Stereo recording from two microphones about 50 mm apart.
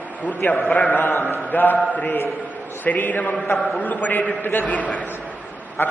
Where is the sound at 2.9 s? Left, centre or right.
Left.